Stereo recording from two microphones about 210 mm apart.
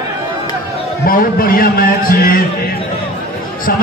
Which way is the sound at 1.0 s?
45° left (ahead or behind).